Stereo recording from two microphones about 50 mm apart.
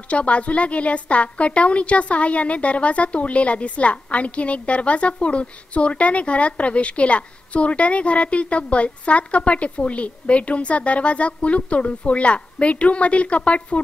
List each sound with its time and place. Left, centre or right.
0.1 s a woman's voice: left